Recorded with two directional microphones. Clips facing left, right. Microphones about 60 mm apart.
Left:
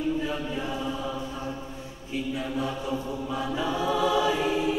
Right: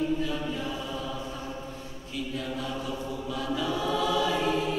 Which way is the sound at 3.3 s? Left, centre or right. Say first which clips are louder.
Left 1 dB; left.